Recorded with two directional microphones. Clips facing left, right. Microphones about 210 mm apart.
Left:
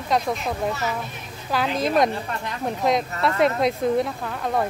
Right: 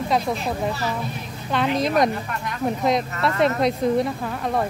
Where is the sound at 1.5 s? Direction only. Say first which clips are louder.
Right 1 dB; centre (ahead or behind).